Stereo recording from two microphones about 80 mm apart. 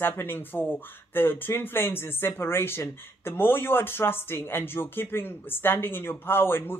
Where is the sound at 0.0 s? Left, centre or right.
Left.